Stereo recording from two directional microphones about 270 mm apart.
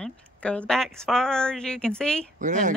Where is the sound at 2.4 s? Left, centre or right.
Right.